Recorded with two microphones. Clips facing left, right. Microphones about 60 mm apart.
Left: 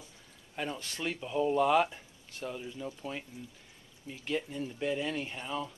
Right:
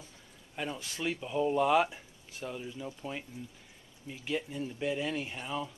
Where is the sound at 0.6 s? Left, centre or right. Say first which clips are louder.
Even; centre.